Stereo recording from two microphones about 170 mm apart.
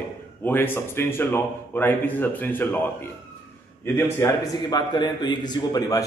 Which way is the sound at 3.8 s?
15° left (ahead or behind).